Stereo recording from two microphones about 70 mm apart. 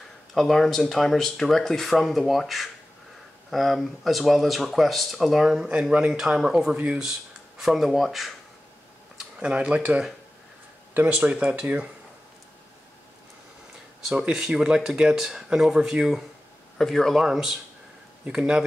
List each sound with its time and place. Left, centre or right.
0.3 s speech: centre
9.4 s speech: centre
11.1 s speech: centre
14.1 s speech: centre